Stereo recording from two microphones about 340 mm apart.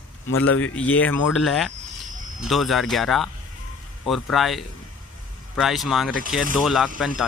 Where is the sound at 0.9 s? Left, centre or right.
Centre.